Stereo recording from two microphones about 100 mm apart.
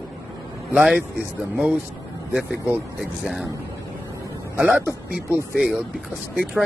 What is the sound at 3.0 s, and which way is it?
Speech, 5° right (ahead or behind).